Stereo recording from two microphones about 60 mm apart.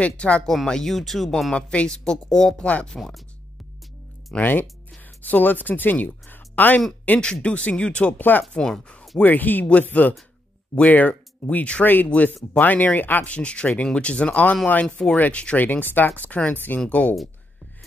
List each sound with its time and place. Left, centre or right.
0.0 s speech: left
0.5 s speech: centre
1.5 s speech: centre
2.6 s speech: centre
2.9 s speech: centre
4.4 s speech: left
7.1 s speech: centre
8.5 s speech: centre
9.2 s speech: left